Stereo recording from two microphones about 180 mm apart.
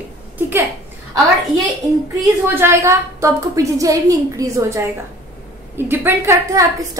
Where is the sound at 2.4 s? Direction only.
15° right (ahead or behind).